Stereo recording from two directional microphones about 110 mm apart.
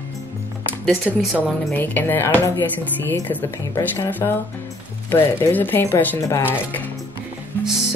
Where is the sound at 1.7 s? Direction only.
15° left (ahead or behind).